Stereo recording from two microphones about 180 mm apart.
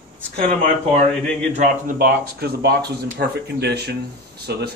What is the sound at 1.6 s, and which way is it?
Speech, 55° right (ahead or behind).